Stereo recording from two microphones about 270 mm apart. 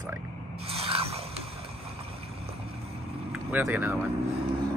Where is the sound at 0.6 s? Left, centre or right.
Right.